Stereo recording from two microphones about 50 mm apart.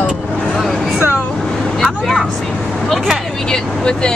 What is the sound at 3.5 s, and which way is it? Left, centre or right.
Speech, centre.